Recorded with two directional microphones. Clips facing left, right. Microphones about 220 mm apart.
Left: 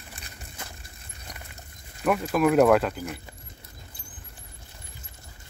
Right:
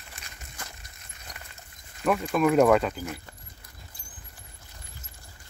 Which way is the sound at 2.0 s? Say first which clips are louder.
Left 1 dB; 5° left (ahead or behind).